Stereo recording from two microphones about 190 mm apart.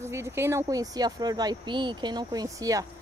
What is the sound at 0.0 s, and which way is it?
Speech, 15° right (ahead or behind).